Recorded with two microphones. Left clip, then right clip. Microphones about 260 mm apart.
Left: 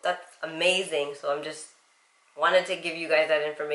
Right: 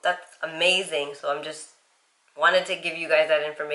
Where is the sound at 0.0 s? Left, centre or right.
Centre.